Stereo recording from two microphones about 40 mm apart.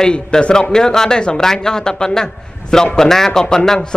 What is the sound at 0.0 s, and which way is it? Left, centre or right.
A man's voice, left.